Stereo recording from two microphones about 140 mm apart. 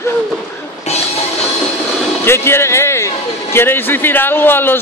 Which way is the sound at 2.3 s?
15° left (ahead or behind).